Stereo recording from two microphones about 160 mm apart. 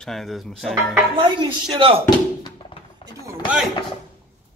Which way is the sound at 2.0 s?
30° left (ahead or behind).